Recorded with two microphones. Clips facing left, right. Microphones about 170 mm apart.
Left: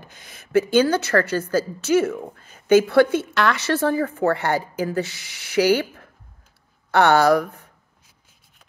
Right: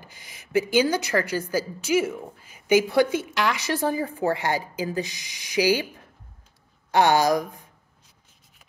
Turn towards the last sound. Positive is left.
turn(degrees=-15)  # may be behind; listen again after turning